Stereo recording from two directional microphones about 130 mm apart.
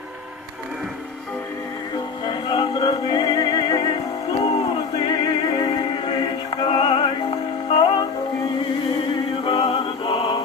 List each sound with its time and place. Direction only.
2.2 s music: 35° left (ahead or behind)
4.3 s music: 45° left (ahead or behind)